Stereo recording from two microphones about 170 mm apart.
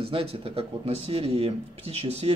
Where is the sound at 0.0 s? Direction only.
35° right (ahead or behind).